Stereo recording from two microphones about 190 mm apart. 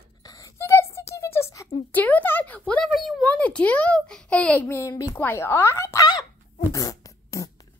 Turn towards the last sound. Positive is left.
turn(degrees=20)  # may be behind; listen again after turning